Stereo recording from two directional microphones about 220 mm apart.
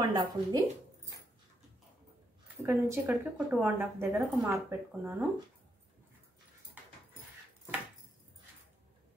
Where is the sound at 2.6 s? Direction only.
10° right (ahead or behind).